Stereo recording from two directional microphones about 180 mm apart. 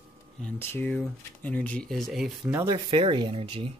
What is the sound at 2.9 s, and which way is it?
Speech, 25° right (ahead or behind).